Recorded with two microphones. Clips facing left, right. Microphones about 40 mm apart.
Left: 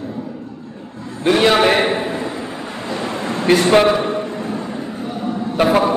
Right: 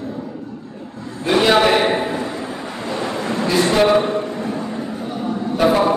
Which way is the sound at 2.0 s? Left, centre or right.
Centre.